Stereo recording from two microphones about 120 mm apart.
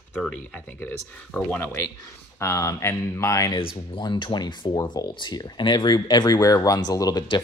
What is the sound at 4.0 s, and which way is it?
Speech, 40° left (ahead or behind).